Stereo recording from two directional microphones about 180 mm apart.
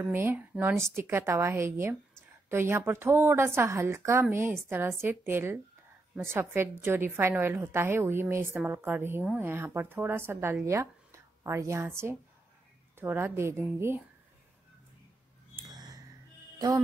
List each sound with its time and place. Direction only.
0.0 s a woman's voice: 10° right (ahead or behind)
15.6 s a sound: 20° right (ahead or behind)
16.5 s speech: 20° right (ahead or behind)